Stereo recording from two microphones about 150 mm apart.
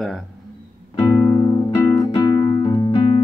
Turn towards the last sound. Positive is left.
turn(degrees=30)  # may be behind; listen again after turning